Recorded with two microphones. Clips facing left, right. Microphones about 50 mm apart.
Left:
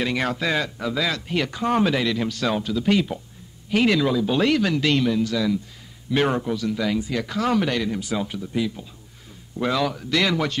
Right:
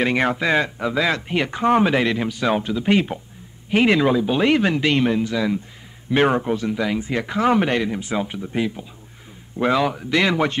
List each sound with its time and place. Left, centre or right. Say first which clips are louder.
0.0 s speech: right 4 dB; right